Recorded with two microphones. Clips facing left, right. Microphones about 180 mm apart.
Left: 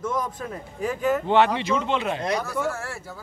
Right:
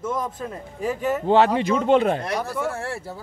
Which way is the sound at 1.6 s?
45° right (ahead or behind).